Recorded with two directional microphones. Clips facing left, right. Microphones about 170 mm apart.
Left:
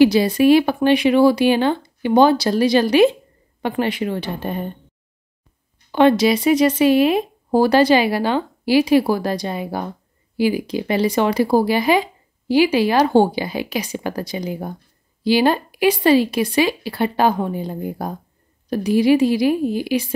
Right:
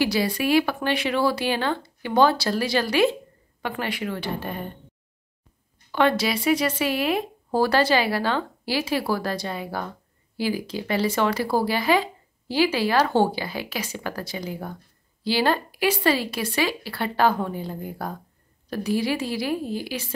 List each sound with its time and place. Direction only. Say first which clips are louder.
0.0 s speech: left 10 dB; 20° left (ahead or behind)
5.9 s speech: left 8 dB; 20° left (ahead or behind)